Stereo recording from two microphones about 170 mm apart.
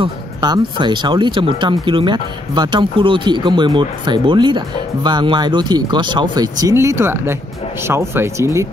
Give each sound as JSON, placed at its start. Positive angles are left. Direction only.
{"t": 0.0, "sound": "speech", "side_deg": -25}